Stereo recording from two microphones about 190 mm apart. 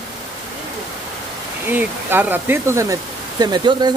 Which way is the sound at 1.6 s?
10° right (ahead or behind).